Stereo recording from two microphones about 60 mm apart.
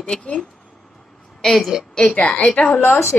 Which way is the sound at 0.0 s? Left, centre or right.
Centre.